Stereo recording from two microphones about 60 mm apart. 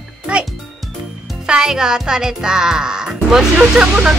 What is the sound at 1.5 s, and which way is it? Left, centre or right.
Music, centre.